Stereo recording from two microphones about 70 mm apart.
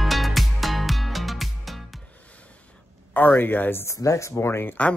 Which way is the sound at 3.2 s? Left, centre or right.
Left.